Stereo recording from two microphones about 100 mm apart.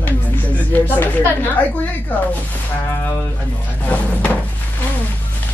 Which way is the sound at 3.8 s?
15° left (ahead or behind).